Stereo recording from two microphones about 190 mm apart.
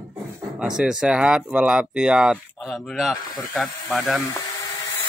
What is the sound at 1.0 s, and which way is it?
Speech, 5° right (ahead or behind).